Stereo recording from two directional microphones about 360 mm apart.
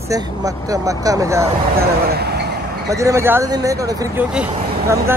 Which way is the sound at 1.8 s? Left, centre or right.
Right.